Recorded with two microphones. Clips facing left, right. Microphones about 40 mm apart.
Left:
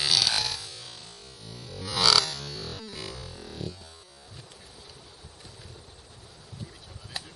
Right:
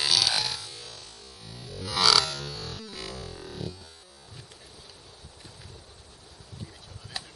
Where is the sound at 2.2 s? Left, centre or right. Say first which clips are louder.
Right 2 dB; right.